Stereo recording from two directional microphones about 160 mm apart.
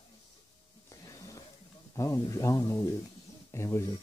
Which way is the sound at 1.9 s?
20° left (ahead or behind).